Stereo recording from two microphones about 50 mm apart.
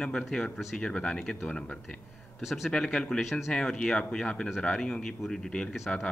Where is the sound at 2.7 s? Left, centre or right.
Centre.